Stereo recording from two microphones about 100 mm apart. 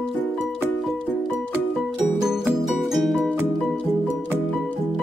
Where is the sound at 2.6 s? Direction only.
Centre (ahead or behind).